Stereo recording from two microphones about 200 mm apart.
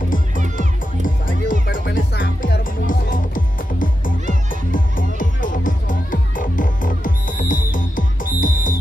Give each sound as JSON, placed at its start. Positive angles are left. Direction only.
{"t": 0.6, "sound": "music", "side_deg": 40}